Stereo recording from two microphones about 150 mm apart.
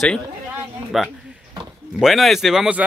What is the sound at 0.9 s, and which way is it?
Speech, centre (ahead or behind).